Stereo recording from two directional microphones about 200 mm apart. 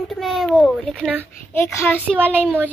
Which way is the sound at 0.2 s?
Centre (ahead or behind).